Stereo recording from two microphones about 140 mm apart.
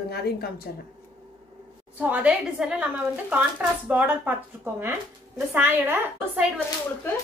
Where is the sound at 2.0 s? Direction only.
10° right (ahead or behind).